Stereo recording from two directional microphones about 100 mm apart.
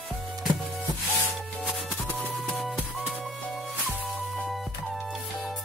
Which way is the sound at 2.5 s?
Centre (ahead or behind).